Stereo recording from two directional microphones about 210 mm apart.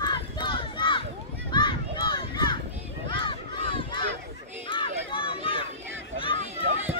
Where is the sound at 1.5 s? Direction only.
20° left (ahead or behind).